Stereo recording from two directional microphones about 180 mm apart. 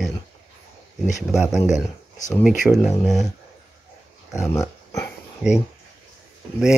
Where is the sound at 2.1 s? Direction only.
20° left (ahead or behind).